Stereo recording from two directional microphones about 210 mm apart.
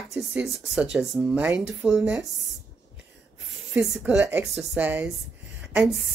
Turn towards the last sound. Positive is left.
turn(degrees=-5)  # may be behind; listen again after turning